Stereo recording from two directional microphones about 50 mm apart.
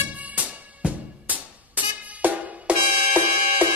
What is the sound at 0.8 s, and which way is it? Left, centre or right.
Music, right.